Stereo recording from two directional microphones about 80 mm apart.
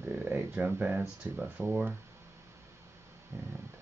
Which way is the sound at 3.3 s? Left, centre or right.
Right.